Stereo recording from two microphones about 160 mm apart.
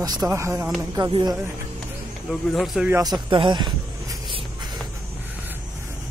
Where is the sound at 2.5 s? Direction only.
Centre (ahead or behind).